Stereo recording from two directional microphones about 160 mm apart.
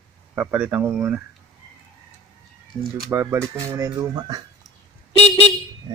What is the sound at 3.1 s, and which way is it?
Speech, 15° right (ahead or behind).